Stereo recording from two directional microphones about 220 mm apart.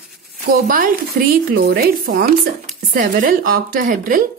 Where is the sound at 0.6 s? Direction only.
40° right (ahead or behind).